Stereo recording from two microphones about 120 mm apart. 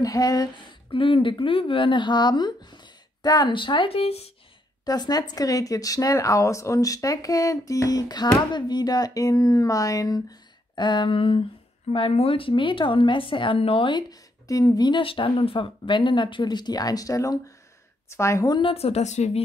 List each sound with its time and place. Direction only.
0.0 s speech: 30° left (ahead or behind)
0.8 s speech: 45° left (ahead or behind)
4.8 s speech: 35° left (ahead or behind)
14.5 s speech: 35° left (ahead or behind)
18.5 s speech: 45° left (ahead or behind); by 19.4 s 70° left (ahead or behind)